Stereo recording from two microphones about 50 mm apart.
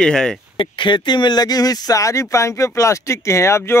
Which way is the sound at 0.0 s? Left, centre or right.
Centre.